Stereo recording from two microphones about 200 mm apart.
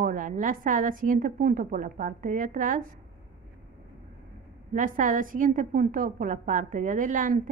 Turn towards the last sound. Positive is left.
turn(degrees=-40)  # may be behind; listen again after turning